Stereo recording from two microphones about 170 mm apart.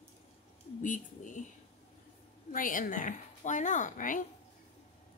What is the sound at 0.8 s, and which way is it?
Speech, 50° left (ahead or behind).